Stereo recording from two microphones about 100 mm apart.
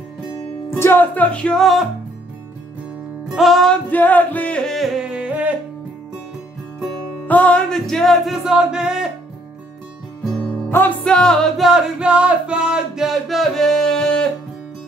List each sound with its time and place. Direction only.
0.7 s music: 25° left (ahead or behind); by 1.9 s centre (ahead or behind)
3.3 s music: centre (ahead or behind)
3.9 s music: 15° left (ahead or behind)
5.1 s music: 15° right (ahead or behind)
7.2 s music: 15° left (ahead or behind); by 9.1 s 5° right (ahead or behind)
10.7 s music: 25° left (ahead or behind)
11.1 s music: 5° left (ahead or behind)